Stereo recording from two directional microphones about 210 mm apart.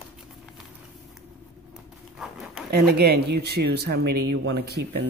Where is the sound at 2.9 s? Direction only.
50° right (ahead or behind).